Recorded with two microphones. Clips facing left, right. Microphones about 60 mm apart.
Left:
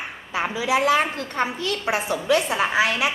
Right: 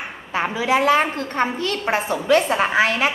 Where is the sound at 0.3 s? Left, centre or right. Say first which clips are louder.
Right 3 dB; right.